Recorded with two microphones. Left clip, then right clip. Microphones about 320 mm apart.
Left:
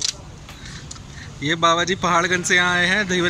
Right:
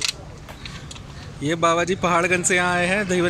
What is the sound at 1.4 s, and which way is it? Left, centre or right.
A man's voice, centre.